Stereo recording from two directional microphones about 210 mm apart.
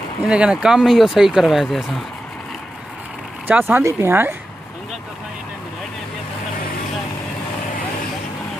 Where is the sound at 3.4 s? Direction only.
10° right (ahead or behind).